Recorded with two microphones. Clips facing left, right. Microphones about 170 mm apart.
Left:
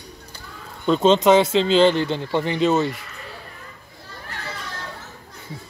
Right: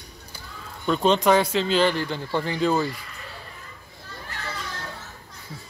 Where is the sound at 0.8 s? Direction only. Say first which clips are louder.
Left 4 dB; 20° left (ahead or behind).